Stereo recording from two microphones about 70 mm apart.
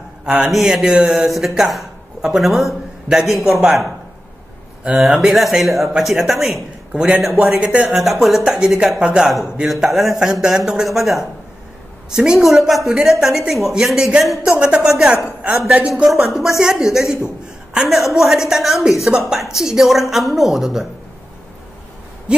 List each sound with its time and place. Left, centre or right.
0.2 s a man's voice: centre
1.4 s speech: centre
4.9 s speech: centre
7.9 s speech: centre
8.5 s speech: centre
14.6 s speech: centre